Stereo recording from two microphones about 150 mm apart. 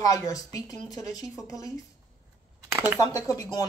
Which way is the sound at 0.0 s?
25° left (ahead or behind).